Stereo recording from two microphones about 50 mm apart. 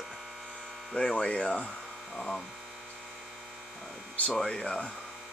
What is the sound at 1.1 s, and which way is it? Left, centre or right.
Speech, centre.